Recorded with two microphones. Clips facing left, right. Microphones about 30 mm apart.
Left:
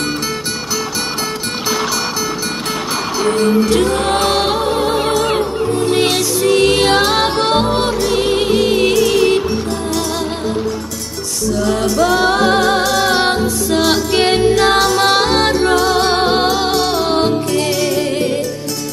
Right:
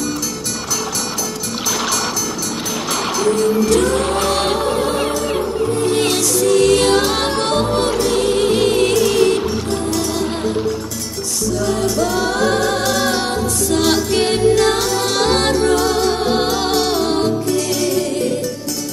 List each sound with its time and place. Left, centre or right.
3.3 s music: left
4.4 s music: centre
6.4 s music: left
8.5 s music: centre
11.6 s music: left
12.8 s music: centre
13.1 s music: left
13.7 s music: centre; by 15.1 s left
15.2 s music: centre
15.6 s music: left
16.0 s music: left
16.3 s music: left